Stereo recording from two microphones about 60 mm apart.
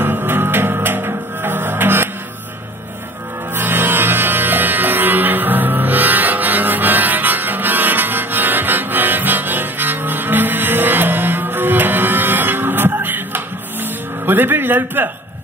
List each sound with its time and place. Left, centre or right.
0.0 s music: right
3.5 s music: right
14.2 s a man's voice: right